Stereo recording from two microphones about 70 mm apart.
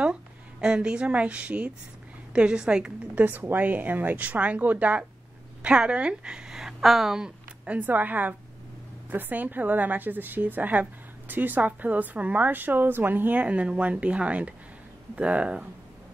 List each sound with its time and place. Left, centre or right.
0.0 s a woman's voice: centre
3.2 s a woman's voice: right